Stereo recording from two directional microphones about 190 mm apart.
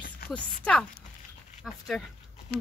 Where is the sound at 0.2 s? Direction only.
55° left (ahead or behind).